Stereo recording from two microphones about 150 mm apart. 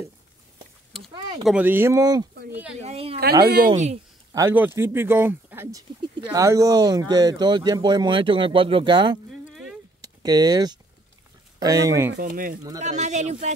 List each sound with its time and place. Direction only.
1.4 s speech: 10° right (ahead or behind)
2.5 s speech: 5° right (ahead or behind)
2.8 s a woman's voice: 40° right (ahead or behind)
3.4 s speech: 90° right
3.7 s speech: 50° right (ahead or behind)
4.3 s speech: 20° right (ahead or behind)
9.5 s a sound: centre (ahead or behind)
10.0 s speech: 25° right (ahead or behind)
12.2 s speech: 70° right (ahead or behind)
12.8 s speech: 50° right (ahead or behind)